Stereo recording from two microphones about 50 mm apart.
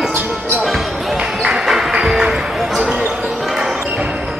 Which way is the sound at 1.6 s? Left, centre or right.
Centre.